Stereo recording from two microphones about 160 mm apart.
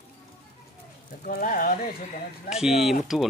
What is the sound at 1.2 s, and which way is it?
Speech, 55° left (ahead or behind).